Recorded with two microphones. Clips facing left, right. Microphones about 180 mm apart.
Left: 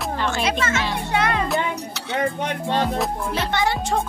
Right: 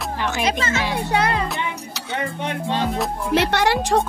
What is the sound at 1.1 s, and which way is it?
Music, 35° right (ahead or behind).